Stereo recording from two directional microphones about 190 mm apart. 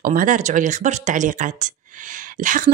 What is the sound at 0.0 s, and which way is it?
Speech, 45° right (ahead or behind).